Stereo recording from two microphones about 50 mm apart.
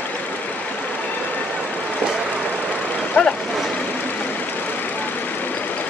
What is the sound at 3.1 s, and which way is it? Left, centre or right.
Vehicle, left.